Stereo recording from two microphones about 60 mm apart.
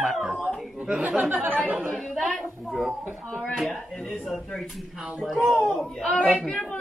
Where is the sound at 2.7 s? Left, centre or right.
Centre.